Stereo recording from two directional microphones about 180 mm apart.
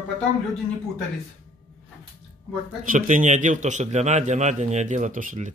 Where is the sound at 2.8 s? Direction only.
45° right (ahead or behind).